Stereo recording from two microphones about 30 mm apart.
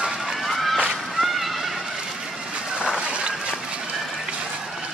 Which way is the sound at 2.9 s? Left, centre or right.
Right.